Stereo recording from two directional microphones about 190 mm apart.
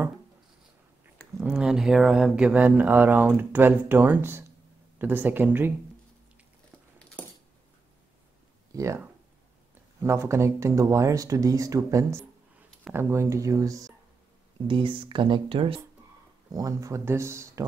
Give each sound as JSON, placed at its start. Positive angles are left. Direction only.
{"t": 1.4, "sound": "speech", "side_deg": -5}
{"t": 8.7, "sound": "speech", "side_deg": -15}
{"t": 10.0, "sound": "speech", "side_deg": -15}